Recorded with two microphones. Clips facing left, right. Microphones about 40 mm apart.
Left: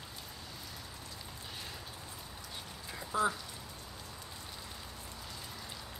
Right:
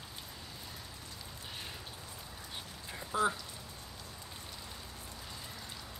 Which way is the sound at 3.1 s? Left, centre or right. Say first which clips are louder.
Even; centre.